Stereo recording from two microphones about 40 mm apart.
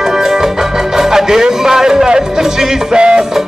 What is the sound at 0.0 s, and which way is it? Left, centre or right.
Music, centre.